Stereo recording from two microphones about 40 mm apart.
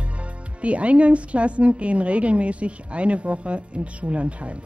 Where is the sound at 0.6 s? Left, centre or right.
Right.